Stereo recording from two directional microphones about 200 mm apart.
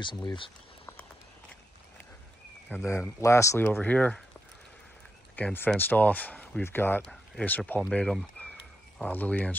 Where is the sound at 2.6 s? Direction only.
10° left (ahead or behind).